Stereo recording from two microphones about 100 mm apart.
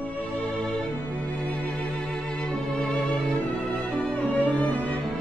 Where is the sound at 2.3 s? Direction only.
10° left (ahead or behind).